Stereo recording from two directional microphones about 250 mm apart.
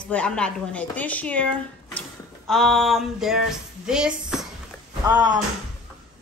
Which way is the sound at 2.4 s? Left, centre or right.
Centre.